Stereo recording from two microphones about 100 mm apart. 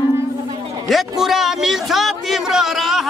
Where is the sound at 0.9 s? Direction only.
Centre (ahead or behind).